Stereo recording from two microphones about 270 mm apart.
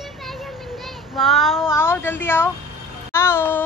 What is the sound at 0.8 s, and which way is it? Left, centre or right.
Child singing, centre.